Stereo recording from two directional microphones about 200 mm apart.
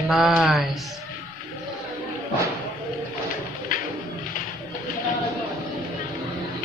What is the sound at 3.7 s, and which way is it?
Bird, 40° left (ahead or behind).